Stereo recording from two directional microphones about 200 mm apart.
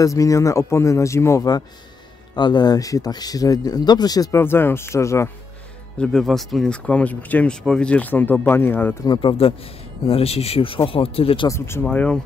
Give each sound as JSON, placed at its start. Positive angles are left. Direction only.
{"t": 0.0, "sound": "speech", "side_deg": 15}
{"t": 5.9, "sound": "speech", "side_deg": 0}
{"t": 9.1, "sound": "speech", "side_deg": 25}
{"t": 11.4, "sound": "speech", "side_deg": 15}